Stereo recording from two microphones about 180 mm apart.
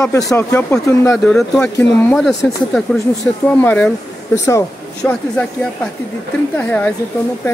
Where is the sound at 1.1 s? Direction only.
5° left (ahead or behind).